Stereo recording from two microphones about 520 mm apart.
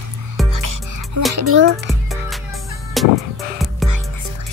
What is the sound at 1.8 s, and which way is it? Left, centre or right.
Music, centre.